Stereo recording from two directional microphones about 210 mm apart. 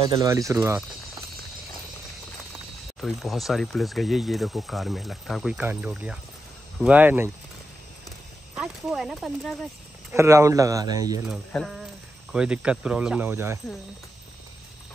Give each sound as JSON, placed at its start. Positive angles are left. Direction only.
{"t": 0.0, "sound": "speech", "side_deg": -15}
{"t": 3.0, "sound": "speech", "side_deg": 0}
{"t": 8.5, "sound": "speech", "side_deg": -5}
{"t": 10.1, "sound": "speech", "side_deg": -15}
{"t": 11.2, "sound": "speech", "side_deg": 0}